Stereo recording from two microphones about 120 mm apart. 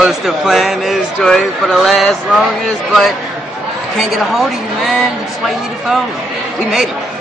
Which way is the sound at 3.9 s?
Centre (ahead or behind).